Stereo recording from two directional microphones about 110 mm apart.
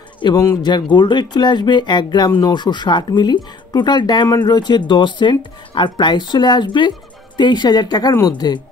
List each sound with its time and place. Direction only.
0.2 s speech: 35° left (ahead or behind)